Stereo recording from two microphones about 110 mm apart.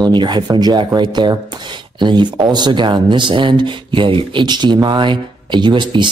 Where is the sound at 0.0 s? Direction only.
45° right (ahead or behind).